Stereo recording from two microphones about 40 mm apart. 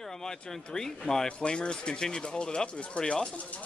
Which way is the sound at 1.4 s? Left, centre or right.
Left.